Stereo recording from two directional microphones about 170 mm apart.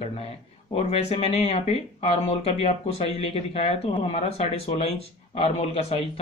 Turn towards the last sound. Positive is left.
turn(degrees=35)  # may be behind; listen again after turning